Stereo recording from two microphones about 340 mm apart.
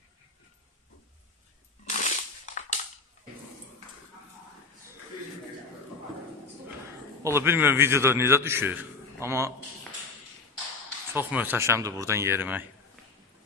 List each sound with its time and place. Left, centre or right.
1.9 s crushing: left
7.2 s a man's voice: centre
11.1 s a man's voice: centre